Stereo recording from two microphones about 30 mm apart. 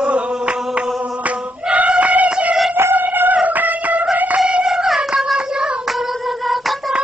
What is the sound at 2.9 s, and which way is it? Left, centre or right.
Music, right.